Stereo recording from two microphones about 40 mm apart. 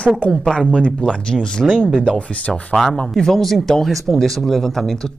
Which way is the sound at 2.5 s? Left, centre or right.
Centre.